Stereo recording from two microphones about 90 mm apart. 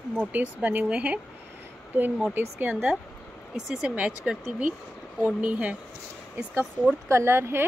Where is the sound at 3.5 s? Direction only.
10° right (ahead or behind).